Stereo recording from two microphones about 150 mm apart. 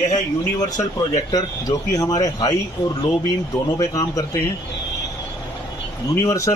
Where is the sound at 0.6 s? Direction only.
25° left (ahead or behind).